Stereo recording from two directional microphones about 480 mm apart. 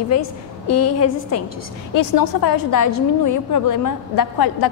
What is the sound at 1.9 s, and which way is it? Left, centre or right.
A woman's voice, left.